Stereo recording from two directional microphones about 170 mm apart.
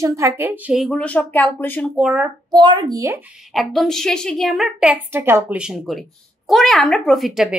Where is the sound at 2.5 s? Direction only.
25° right (ahead or behind).